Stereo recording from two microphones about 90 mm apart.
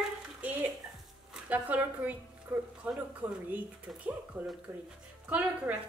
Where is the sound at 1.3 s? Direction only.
15° right (ahead or behind).